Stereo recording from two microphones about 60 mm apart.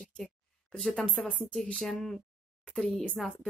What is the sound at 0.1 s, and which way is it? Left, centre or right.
Speech, centre.